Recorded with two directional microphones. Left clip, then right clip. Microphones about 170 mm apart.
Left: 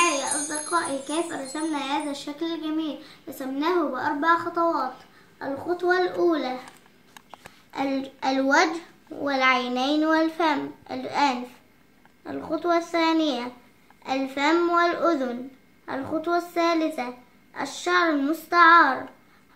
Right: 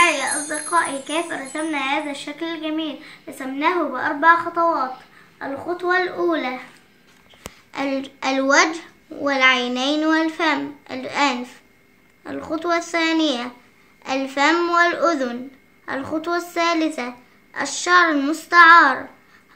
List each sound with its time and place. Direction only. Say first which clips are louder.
0.0 s wind chime: right 6 dB; 20° right (ahead or behind)
0.5 s a child's voice: right 7 dB; 10° right (ahead or behind)
7.4 s a child's voice: right 3 dB; 40° right (ahead or behind)